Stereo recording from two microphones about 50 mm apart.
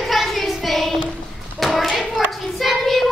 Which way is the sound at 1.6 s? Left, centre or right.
Centre.